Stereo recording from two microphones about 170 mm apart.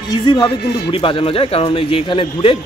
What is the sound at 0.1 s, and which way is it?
A man's voice, 25° left (ahead or behind).